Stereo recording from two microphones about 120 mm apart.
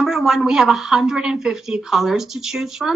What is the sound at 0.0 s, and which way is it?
A woman's voice, 5° right (ahead or behind).